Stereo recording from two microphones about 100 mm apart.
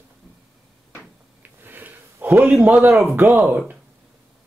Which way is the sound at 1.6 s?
20° right (ahead or behind).